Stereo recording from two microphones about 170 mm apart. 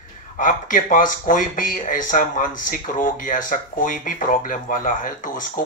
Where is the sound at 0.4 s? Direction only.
50° left (ahead or behind).